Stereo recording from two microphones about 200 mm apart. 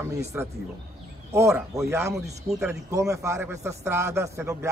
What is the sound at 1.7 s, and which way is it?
Speech, 15° right (ahead or behind).